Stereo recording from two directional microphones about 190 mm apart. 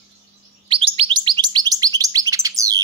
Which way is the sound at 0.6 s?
30° right (ahead or behind).